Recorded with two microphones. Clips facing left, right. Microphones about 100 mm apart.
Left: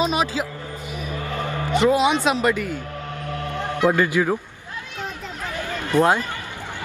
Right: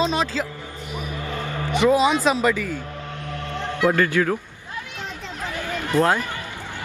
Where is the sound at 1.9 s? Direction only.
Centre (ahead or behind).